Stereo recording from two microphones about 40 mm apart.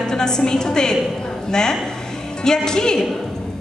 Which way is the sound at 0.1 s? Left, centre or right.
Centre.